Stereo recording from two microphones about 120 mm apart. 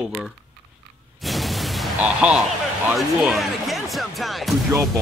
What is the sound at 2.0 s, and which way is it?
Speech, 10° right (ahead or behind).